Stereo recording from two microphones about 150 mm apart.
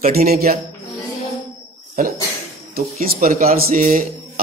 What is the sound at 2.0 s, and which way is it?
Speech, 75° right (ahead or behind).